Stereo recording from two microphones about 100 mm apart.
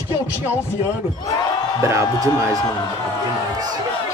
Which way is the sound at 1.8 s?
30° right (ahead or behind).